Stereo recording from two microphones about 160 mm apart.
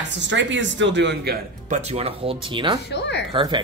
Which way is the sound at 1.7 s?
40° right (ahead or behind).